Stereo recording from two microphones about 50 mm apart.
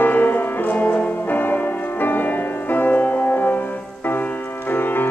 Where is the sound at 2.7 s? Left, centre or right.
Left.